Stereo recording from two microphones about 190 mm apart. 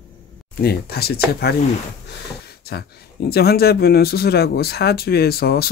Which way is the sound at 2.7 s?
55° left (ahead or behind).